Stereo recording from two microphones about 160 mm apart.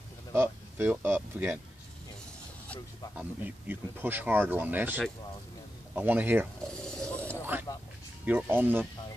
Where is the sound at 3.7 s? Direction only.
10° right (ahead or behind).